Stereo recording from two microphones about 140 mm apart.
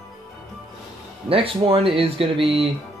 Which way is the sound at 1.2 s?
40° right (ahead or behind).